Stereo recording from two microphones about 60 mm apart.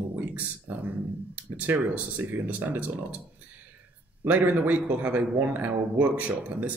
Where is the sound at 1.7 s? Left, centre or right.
Right.